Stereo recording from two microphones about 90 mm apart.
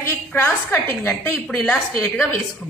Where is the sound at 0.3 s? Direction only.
20° left (ahead or behind).